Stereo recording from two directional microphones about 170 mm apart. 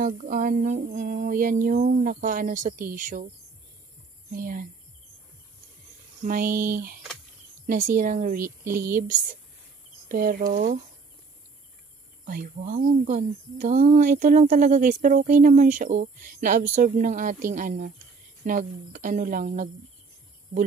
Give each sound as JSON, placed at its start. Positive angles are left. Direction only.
{"t": 0.0, "sound": "speech", "side_deg": -50}
{"t": 4.3, "sound": "speech", "side_deg": -55}
{"t": 6.2, "sound": "speech", "side_deg": -55}
{"t": 10.0, "sound": "speech", "side_deg": -55}
{"t": 12.6, "sound": "speech", "side_deg": -45}